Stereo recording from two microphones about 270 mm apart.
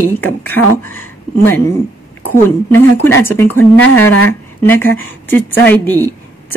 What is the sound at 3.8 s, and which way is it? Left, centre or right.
Speech, left.